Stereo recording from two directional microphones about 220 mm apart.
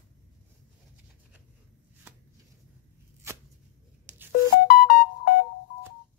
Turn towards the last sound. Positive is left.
turn(degrees=40)  # may be behind; listen again after turning